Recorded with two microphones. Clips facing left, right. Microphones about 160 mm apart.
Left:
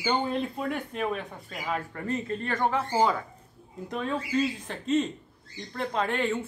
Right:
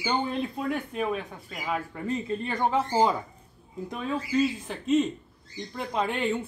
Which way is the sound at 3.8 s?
5° right (ahead or behind).